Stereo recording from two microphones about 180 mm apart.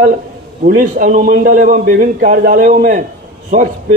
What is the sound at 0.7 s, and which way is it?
A man's voice, 50° right (ahead or behind).